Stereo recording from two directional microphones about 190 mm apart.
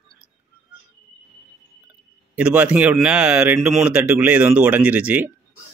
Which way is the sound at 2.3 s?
5° right (ahead or behind).